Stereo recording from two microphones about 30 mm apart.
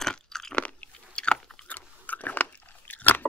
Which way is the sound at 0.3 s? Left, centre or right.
Centre.